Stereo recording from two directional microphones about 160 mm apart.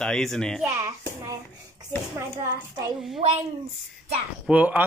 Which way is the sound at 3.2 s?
40° right (ahead or behind).